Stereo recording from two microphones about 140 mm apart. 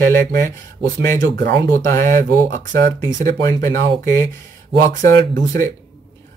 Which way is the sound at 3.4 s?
20° left (ahead or behind).